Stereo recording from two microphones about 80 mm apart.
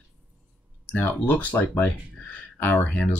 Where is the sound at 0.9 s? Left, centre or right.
Left.